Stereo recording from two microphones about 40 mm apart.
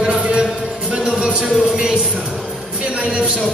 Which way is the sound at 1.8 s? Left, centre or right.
Centre.